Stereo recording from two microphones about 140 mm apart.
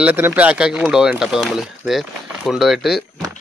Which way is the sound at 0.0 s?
10° right (ahead or behind).